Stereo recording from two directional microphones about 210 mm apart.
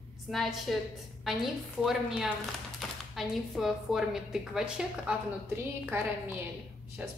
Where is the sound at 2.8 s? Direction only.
Centre (ahead or behind).